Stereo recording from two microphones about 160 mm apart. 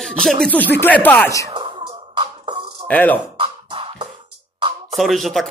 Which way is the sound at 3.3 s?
30° right (ahead or behind).